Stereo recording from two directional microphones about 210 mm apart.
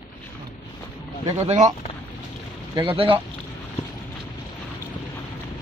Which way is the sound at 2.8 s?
25° right (ahead or behind).